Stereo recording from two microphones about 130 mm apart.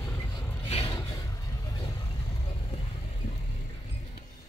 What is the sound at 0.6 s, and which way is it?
Vehicle, 50° left (ahead or behind).